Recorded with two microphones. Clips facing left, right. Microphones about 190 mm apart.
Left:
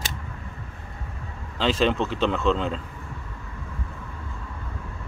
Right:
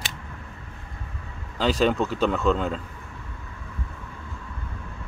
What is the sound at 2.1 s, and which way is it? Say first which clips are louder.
Speech: even; 5° right (ahead or behind).